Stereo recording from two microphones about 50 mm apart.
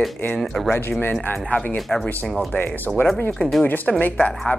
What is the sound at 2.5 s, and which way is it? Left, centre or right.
Speech, left.